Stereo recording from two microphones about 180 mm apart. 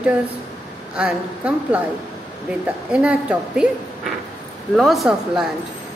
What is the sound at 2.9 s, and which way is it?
Speech, 5° right (ahead or behind).